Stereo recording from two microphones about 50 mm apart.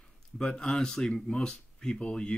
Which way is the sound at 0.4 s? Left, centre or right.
Centre.